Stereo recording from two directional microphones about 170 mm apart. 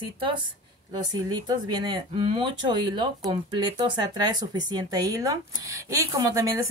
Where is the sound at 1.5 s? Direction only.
25° right (ahead or behind).